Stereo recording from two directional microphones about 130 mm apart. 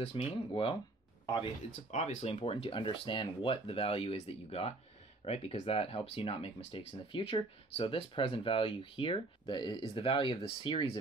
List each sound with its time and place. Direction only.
0.0 s speech: 45° left (ahead or behind)
1.9 s speech: 60° left (ahead or behind); by 11.0 s 35° left (ahead or behind)